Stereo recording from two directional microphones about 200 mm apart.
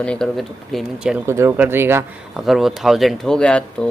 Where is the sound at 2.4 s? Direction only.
Centre (ahead or behind).